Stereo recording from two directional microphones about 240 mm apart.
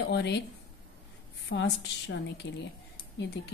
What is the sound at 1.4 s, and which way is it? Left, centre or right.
A woman's voice, left.